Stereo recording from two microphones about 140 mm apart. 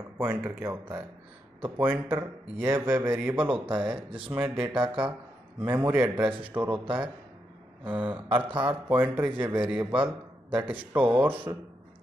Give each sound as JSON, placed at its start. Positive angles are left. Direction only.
{"t": 0.2, "sound": "a man's voice", "side_deg": -15}
{"t": 3.4, "sound": "speech", "side_deg": -35}
{"t": 3.7, "sound": "a man's voice", "side_deg": -10}